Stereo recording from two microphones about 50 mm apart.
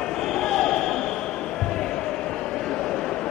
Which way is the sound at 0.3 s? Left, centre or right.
Centre.